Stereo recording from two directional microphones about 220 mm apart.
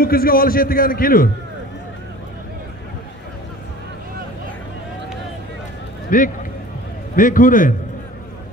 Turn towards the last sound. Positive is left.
turn(degrees=40)  # may be behind; listen again after turning